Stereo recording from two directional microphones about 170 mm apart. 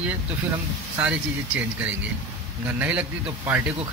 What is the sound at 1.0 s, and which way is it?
A man's voice, 10° right (ahead or behind).